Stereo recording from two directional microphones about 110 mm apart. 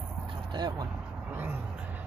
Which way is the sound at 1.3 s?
15° right (ahead or behind).